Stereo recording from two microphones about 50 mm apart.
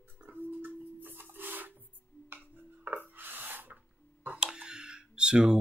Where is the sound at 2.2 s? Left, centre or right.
Right.